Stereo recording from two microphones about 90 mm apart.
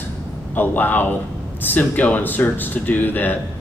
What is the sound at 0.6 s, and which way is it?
Speech, 20° left (ahead or behind).